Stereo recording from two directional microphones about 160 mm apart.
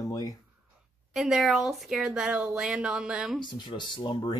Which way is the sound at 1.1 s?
Centre (ahead or behind).